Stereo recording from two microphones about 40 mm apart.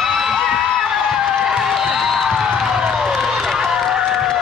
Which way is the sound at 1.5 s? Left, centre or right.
Centre.